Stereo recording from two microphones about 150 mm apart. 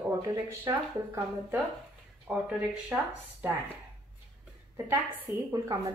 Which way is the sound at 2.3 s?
10° right (ahead or behind).